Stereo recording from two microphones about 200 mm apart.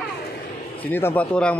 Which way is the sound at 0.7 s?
10° left (ahead or behind).